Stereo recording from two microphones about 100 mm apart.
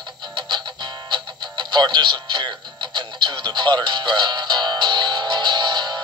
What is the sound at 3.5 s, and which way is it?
Music, 45° right (ahead or behind).